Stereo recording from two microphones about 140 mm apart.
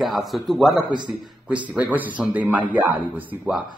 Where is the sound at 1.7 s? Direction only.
10° right (ahead or behind).